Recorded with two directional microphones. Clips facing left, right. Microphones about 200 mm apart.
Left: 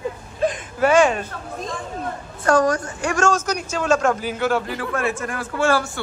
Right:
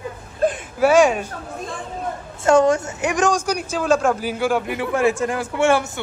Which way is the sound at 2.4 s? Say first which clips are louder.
Right 3 dB; 25° right (ahead or behind).